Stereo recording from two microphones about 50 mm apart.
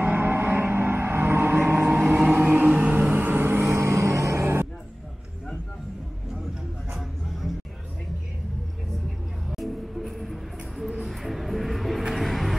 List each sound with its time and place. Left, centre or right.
0.0 s music: right
1.9 s music: right
3.0 s a sound: right
3.8 s music: right
6.9 s music: centre
9.5 s music: centre